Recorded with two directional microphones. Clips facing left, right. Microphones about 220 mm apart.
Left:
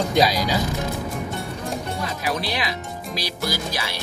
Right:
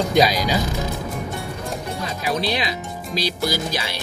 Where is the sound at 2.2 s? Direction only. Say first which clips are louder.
Right 4 dB; 25° right (ahead or behind).